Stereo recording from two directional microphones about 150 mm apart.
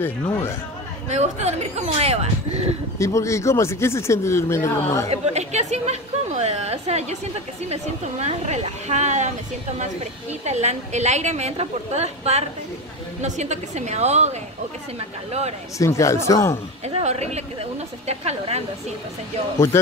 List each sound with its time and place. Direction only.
0.0 s speech: 15° left (ahead or behind)
1.0 s a woman's voice: 50° right (ahead or behind)
3.0 s speech: 20° left (ahead or behind)
5.1 s a woman's voice: 45° right (ahead or behind)
10.4 s a woman's voice: 50° right (ahead or behind)
15.8 s speech: 20° left (ahead or behind)
16.8 s a woman's voice: 45° right (ahead or behind)
19.7 s speech: 15° left (ahead or behind)